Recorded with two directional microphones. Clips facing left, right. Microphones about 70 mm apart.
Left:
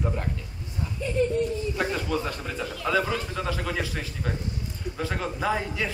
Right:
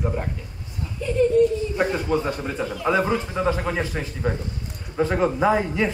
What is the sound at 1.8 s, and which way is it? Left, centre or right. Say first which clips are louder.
A man's voice: right 6 dB; right.